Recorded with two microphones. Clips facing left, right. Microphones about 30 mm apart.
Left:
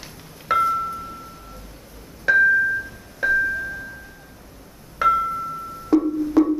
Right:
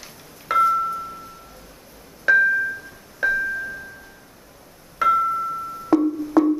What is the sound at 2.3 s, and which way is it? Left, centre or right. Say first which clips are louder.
Music: left 1 dB; centre.